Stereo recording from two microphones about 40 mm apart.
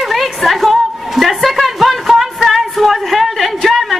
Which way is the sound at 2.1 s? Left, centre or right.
Centre.